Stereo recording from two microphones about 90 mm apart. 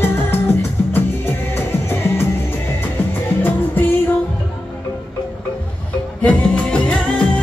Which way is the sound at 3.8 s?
20° left (ahead or behind).